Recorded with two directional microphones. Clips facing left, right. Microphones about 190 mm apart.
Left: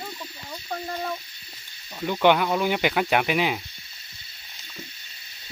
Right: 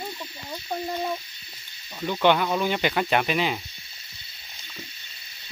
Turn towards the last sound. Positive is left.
turn(degrees=10)  # may be behind; listen again after turning